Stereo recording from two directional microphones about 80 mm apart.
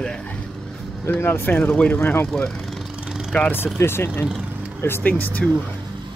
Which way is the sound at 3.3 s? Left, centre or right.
Centre.